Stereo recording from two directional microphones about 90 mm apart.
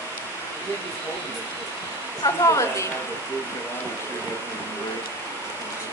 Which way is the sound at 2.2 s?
35° left (ahead or behind).